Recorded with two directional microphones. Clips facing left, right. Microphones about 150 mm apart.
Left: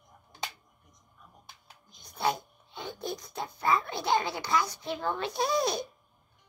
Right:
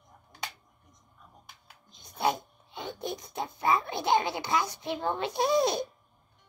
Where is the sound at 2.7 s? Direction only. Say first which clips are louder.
Right 1 dB; 20° right (ahead or behind).